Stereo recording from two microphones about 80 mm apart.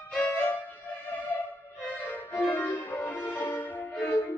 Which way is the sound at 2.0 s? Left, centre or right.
Left.